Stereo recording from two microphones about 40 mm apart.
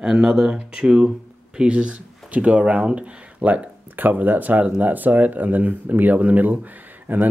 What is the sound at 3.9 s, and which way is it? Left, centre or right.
Speech, right.